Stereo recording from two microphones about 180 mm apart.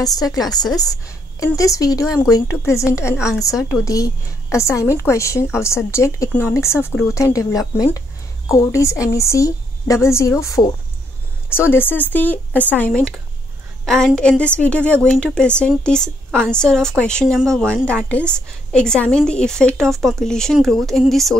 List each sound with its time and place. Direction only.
0.0 s a woman's voice: 20° left (ahead or behind); by 21.4 s centre (ahead or behind)